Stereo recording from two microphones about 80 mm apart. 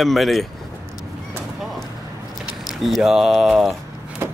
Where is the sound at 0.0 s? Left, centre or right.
Centre.